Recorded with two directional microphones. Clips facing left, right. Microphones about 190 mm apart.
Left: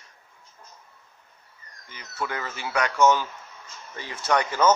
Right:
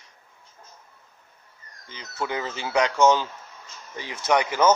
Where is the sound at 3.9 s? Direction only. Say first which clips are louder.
Right 2 dB; 15° right (ahead or behind).